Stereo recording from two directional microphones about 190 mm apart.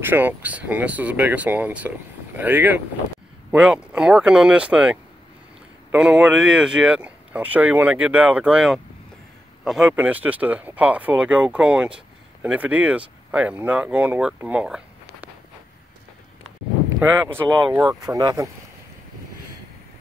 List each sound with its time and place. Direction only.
0.0 s speech: 10° right (ahead or behind)
17.6 s speech: 20° right (ahead or behind)